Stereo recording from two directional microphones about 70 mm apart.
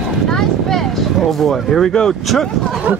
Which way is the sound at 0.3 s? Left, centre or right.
Centre.